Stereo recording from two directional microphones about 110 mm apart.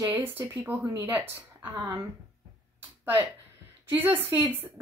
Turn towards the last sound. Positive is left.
turn(degrees=-20)  # may be behind; listen again after turning